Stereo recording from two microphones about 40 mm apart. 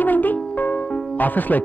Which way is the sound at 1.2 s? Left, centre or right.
Left.